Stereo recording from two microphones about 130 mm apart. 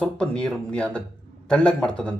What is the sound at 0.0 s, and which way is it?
Speech, 5° left (ahead or behind).